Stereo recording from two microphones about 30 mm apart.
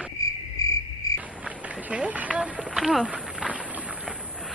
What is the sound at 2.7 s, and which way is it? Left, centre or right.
Speech, centre.